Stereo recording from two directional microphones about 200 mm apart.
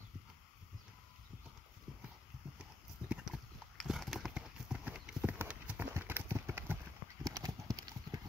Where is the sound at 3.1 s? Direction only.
5° right (ahead or behind).